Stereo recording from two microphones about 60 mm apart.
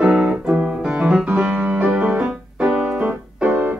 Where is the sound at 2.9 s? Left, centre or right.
Centre.